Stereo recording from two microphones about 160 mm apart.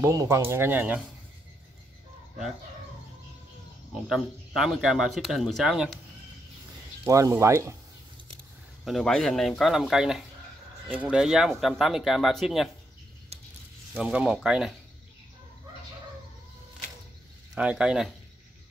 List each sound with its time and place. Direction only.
0.0 s speech: 20° right (ahead or behind)
3.9 s speech: centre (ahead or behind)
7.1 s speech: 20° right (ahead or behind)
8.8 s speech: centre (ahead or behind)
13.3 s a sound: 40° right (ahead or behind)
13.9 s speech: 5° right (ahead or behind)
17.6 s speech: 5° right (ahead or behind)